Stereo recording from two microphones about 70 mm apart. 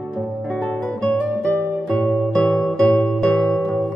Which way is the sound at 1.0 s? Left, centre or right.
Left.